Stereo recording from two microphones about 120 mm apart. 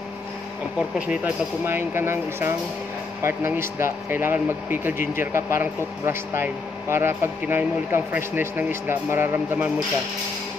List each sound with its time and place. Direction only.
0.9 s speech: 10° right (ahead or behind)